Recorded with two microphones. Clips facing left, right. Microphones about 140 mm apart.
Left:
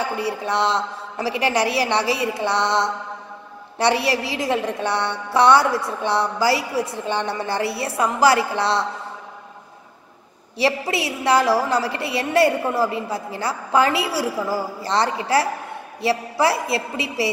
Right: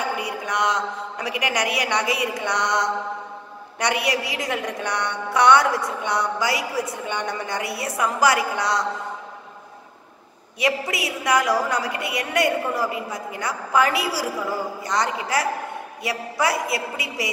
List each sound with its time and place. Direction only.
0.5 s a woman's voice: 30° left (ahead or behind)
10.6 s a woman's voice: 30° left (ahead or behind)